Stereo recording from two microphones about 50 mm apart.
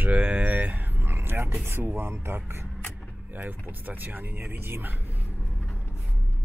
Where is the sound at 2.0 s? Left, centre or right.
Right.